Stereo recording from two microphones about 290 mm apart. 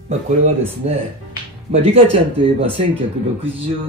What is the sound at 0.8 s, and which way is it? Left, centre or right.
Speech, right.